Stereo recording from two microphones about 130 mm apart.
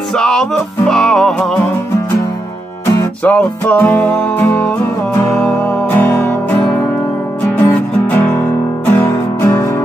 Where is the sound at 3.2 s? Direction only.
10° left (ahead or behind).